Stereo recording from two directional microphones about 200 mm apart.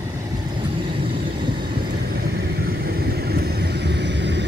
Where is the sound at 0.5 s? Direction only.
25° right (ahead or behind).